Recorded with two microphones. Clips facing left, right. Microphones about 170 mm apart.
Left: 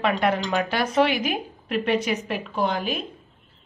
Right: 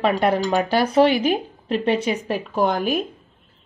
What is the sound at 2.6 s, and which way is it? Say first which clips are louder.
Speech: right 5 dB; 45° right (ahead or behind).